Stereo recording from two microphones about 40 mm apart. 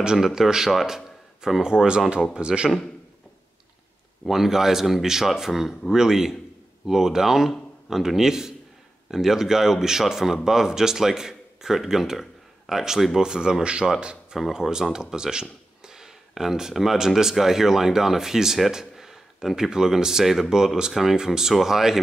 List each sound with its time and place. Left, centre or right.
0.2 s speech: centre
4.3 s speech: centre
13.2 s speech: centre